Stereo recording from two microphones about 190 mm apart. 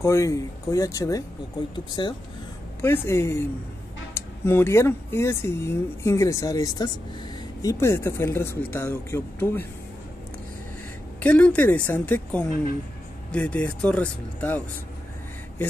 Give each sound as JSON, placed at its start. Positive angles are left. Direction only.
{"t": 0.0, "sound": "speech", "side_deg": 15}
{"t": 11.1, "sound": "speech", "side_deg": 5}